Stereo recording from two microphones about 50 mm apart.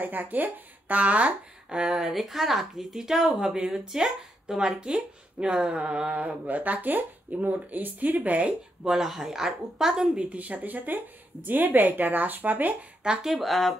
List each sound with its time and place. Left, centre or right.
0.0 s speech: right
1.7 s speech: centre; by 8.5 s right
8.8 s speech: centre
10.3 s speech: right
13.0 s speech: centre